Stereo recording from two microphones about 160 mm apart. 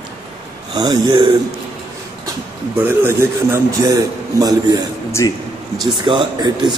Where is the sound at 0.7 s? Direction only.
25° right (ahead or behind).